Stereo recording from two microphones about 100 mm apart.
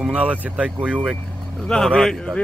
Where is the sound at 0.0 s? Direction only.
10° right (ahead or behind).